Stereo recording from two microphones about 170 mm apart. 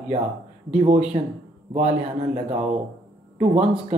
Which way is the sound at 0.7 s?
40° right (ahead or behind).